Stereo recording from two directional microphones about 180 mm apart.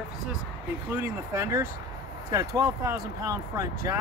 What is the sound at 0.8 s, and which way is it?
Speech, 15° right (ahead or behind).